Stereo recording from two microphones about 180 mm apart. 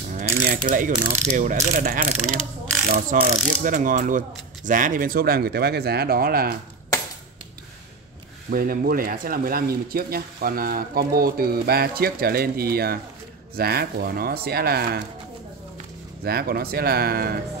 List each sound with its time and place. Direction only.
0.1 s mechanisms: 45° right (ahead or behind)
4.6 s speech: 45° right (ahead or behind)
8.5 s speech: 55° right (ahead or behind)
16.3 s speech: 60° right (ahead or behind)